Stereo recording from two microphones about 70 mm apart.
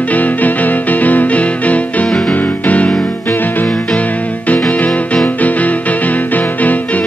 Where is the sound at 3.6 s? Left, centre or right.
Centre.